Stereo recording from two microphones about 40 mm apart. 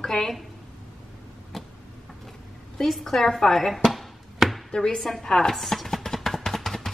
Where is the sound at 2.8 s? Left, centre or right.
Centre.